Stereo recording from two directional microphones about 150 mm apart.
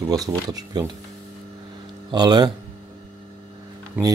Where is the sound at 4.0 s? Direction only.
10° right (ahead or behind).